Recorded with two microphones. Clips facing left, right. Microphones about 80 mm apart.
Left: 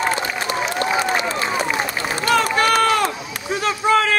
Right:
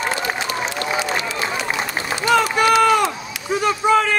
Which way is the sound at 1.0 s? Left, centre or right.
Left.